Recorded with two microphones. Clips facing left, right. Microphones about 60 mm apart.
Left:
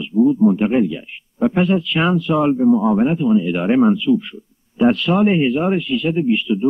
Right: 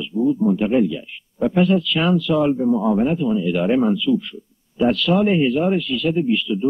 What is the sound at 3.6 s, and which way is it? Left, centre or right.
Speech, centre.